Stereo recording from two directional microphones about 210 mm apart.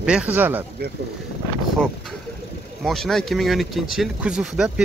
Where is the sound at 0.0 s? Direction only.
5° right (ahead or behind).